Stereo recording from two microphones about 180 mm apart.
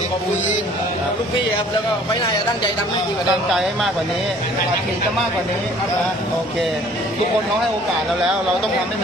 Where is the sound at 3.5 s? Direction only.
Centre (ahead or behind).